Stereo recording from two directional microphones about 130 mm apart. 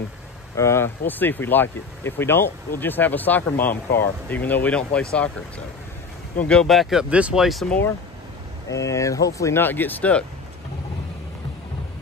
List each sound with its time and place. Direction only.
0.6 s speech: 20° left (ahead or behind)
6.4 s speech: 5° left (ahead or behind)
8.6 s speech: 25° left (ahead or behind)